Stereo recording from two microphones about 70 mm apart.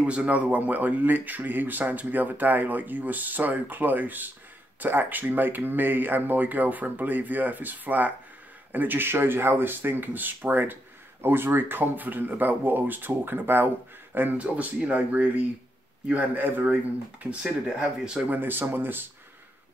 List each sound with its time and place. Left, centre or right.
0.0 s speech: centre
17.6 s speech: centre
18.2 s speech: right